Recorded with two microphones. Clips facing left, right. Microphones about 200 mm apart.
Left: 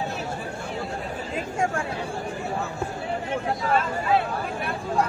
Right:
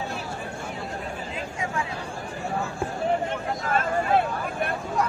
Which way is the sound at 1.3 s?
50° left (ahead or behind).